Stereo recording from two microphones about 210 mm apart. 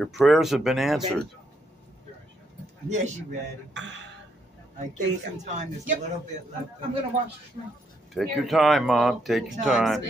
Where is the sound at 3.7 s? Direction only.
60° right (ahead or behind).